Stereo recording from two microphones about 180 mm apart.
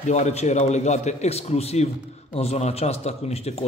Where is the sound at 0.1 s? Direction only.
40° left (ahead or behind).